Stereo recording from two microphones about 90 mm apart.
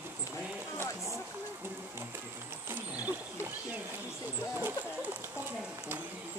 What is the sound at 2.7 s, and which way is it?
Wild animals, 20° right (ahead or behind).